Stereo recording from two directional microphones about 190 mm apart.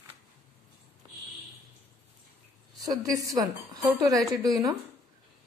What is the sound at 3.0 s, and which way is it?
A woman's voice, 20° right (ahead or behind).